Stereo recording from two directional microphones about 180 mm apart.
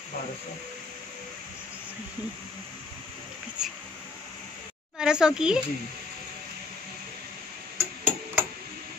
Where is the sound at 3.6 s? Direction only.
5° right (ahead or behind).